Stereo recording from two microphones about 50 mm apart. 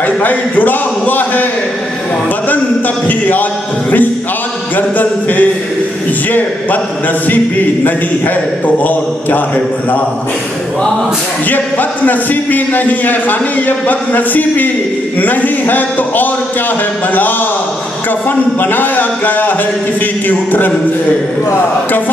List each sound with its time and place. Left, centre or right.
0.0 s a man's voice: left
3.1 s a man's voice: left
4.7 s a man's voice: left
8.6 s a man's voice: left
11.4 s a man's voice: left
18.3 s a man's voice: left